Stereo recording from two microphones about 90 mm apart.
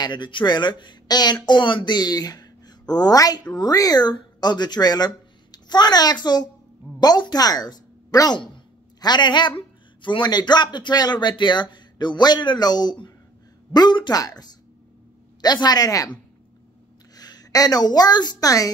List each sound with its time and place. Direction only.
0.0 s a woman's voice: 60° left (ahead or behind); by 16.1 s 40° left (ahead or behind)
17.1 s a woman's voice: 45° left (ahead or behind)